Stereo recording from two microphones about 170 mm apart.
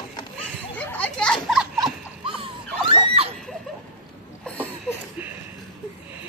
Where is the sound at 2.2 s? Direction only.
30° right (ahead or behind).